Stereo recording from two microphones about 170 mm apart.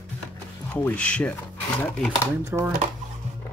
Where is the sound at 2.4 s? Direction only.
15° right (ahead or behind).